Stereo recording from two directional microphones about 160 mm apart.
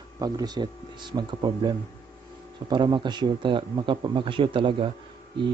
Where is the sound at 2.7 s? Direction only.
30° right (ahead or behind).